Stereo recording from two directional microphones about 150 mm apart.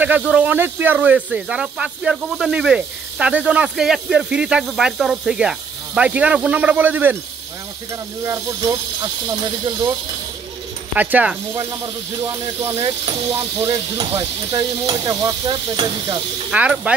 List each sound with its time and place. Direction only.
0.0 s speech: 10° right (ahead or behind)
8.3 s speech: 25° right (ahead or behind)
11.0 s speech: 10° right (ahead or behind)
11.5 s speech: 25° right (ahead or behind)
16.4 s speech: 5° right (ahead or behind)